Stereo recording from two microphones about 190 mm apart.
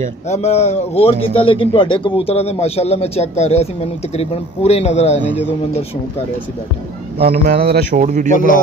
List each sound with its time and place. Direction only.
0.3 s a man's voice: 35° left (ahead or behind)
7.2 s speech: 55° right (ahead or behind)
8.0 s speech: 40° right (ahead or behind)